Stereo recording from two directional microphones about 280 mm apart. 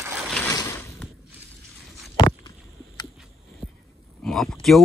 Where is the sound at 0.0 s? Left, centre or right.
Centre.